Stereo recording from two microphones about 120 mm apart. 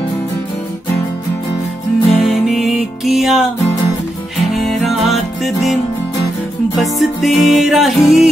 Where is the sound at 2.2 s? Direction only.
Centre (ahead or behind).